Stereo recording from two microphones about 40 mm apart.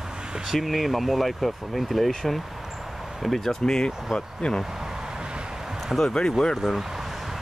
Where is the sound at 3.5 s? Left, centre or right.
Centre.